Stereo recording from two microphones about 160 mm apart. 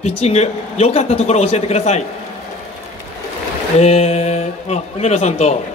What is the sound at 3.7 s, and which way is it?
A man's voice, 45° left (ahead or behind).